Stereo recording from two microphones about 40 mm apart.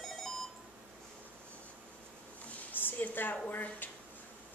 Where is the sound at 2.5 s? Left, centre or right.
Left.